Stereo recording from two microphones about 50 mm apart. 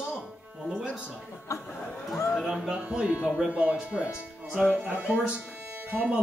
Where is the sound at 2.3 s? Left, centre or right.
Centre.